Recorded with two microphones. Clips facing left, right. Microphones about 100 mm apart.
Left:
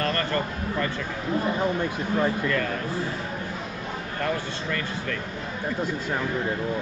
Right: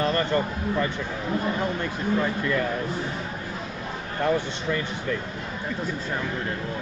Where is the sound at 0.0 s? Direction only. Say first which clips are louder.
Right 3 dB; 20° right (ahead or behind).